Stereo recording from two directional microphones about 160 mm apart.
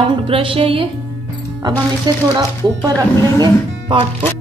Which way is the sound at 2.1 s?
25° right (ahead or behind).